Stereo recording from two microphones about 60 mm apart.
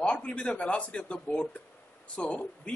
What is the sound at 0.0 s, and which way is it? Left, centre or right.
A man's voice, centre.